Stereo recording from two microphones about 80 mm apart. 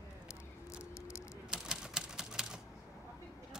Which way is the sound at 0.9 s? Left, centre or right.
Left.